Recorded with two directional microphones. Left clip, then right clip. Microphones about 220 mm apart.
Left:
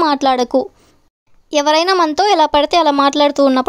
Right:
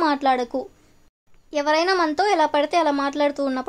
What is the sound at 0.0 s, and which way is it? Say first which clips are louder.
A woman's voice: left 6 dB; 45° left (ahead or behind).